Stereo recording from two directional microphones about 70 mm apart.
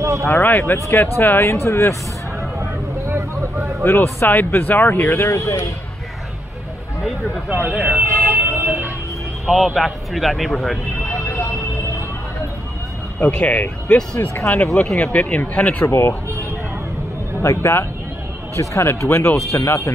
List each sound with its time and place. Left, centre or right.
0.3 s speech: left
0.8 s speech: left
1.1 s speech: left
3.8 s speech: left
5.0 s speech: left
7.5 s speech: right
8.1 s vehicle: right
9.5 s speech: centre
11.2 s vehicle: left
13.2 s speech: centre
15.9 s speech: left
17.4 s speech: left